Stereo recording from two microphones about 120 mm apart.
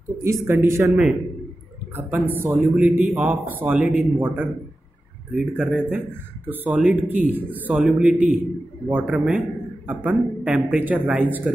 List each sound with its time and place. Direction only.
0.2 s speech: 20° right (ahead or behind)
0.8 s a man's voice: 5° right (ahead or behind)
2.0 s a man's voice: 15° right (ahead or behind)